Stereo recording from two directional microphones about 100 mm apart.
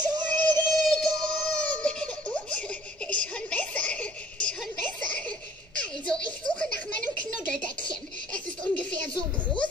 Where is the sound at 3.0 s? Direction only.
10° left (ahead or behind).